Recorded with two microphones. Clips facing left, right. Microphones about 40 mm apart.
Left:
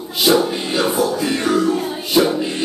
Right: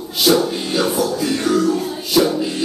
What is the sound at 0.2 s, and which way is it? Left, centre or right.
Music, centre.